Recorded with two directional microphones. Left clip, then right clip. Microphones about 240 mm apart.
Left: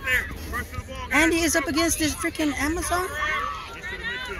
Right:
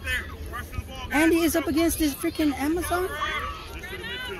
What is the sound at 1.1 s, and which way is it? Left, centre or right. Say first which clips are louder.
Speech: left 1 dB; centre.